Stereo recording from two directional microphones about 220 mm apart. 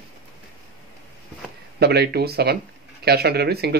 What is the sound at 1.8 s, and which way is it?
Speech, 45° right (ahead or behind).